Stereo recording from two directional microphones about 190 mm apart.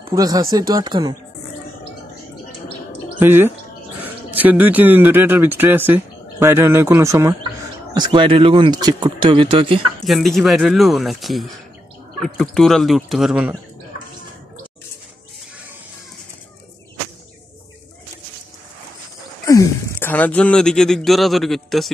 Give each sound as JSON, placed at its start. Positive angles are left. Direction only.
{"t": 0.1, "sound": "speech", "side_deg": -20}
{"t": 3.2, "sound": "speech", "side_deg": -10}
{"t": 10.0, "sound": "speech", "side_deg": 0}
{"t": 19.4, "sound": "speech", "side_deg": 15}